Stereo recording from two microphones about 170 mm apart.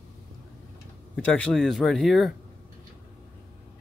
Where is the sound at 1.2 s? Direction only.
5° left (ahead or behind).